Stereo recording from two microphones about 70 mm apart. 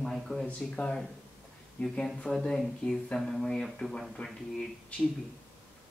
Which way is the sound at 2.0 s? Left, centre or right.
Centre.